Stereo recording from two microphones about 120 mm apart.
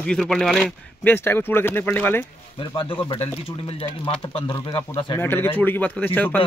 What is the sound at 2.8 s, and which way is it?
Speech, 50° left (ahead or behind).